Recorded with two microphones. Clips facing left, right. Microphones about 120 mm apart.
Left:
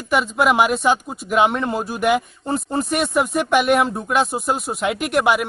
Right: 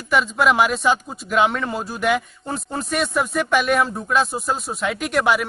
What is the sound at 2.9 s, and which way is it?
Speech, 10° left (ahead or behind).